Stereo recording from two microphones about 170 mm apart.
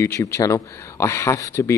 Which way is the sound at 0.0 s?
15° left (ahead or behind).